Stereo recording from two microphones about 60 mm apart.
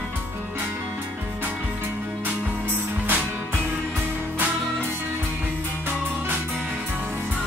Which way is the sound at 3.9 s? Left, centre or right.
Right.